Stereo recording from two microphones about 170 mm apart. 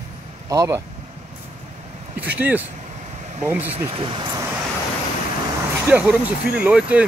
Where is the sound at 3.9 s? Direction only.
30° right (ahead or behind).